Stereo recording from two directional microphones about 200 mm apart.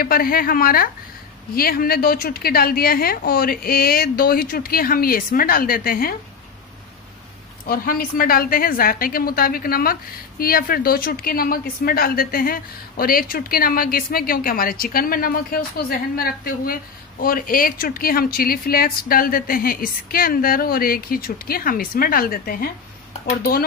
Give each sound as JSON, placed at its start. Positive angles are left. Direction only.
{"t": 0.0, "sound": "speech", "side_deg": 45}
{"t": 7.6, "sound": "speech", "side_deg": 45}